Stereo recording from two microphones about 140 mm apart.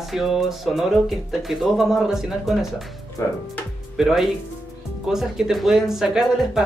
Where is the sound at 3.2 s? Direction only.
15° left (ahead or behind).